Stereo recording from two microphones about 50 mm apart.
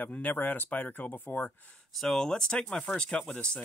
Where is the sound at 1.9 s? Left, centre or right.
Centre; by 3.6 s left.